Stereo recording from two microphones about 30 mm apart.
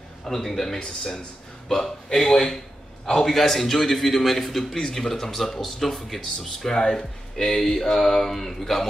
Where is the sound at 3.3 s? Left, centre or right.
Centre.